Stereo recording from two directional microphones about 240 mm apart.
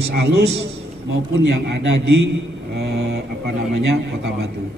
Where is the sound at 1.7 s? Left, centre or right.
Right.